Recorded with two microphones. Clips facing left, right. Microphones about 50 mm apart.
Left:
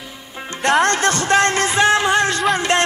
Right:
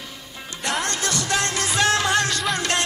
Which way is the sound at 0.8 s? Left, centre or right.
Left.